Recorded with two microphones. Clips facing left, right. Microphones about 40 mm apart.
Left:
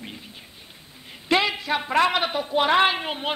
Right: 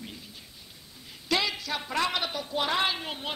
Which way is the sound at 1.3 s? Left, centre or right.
Left.